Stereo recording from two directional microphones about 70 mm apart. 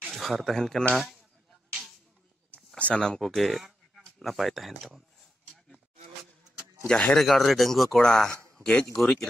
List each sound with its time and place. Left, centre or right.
0.0 s speech: centre
0.9 s speech: centre
2.8 s speech: centre
3.2 s speech: centre
6.9 s speech: centre
7.2 s speech: centre
8.9 s speech: centre